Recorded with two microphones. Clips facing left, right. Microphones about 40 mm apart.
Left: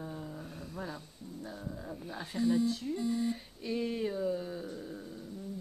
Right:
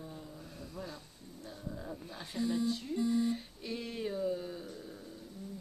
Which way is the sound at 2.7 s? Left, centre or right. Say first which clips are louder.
Right 1 dB; centre.